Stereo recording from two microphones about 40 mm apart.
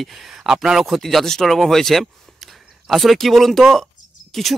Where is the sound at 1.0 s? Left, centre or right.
Centre.